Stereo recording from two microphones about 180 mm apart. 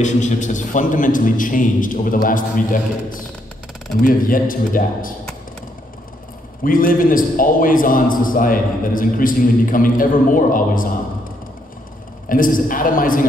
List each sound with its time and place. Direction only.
0.0 s a man's voice: 40° left (ahead or behind)
6.6 s a man's voice: 50° left (ahead or behind)
12.3 s a man's voice: 50° left (ahead or behind)